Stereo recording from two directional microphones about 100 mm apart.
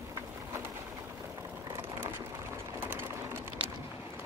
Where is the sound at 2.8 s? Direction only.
20° right (ahead or behind).